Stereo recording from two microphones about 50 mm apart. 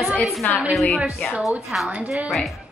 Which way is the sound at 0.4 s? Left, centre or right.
Left.